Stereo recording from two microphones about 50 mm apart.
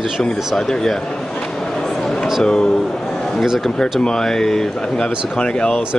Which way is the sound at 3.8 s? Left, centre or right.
Centre.